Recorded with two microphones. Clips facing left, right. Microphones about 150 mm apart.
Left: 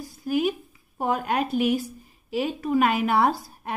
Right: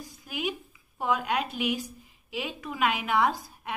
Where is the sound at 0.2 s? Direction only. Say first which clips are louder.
Left 9 dB; 45° left (ahead or behind).